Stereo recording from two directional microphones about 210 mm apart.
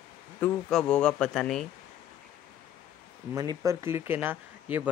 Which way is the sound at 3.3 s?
20° right (ahead or behind).